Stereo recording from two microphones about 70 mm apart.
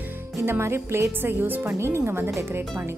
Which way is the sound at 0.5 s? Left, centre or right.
Right.